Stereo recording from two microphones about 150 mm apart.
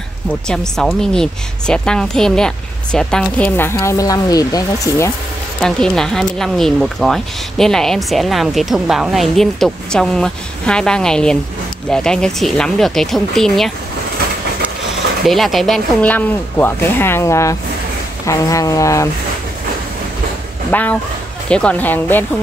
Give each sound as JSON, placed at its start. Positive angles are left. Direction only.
{"t": 0.5, "sound": "speech", "side_deg": 5}
{"t": 5.6, "sound": "speech", "side_deg": 5}
{"t": 15.2, "sound": "speech", "side_deg": 0}
{"t": 20.7, "sound": "speech", "side_deg": 10}